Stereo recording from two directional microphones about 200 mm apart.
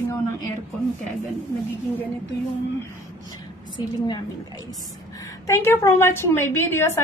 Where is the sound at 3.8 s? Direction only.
20° left (ahead or behind).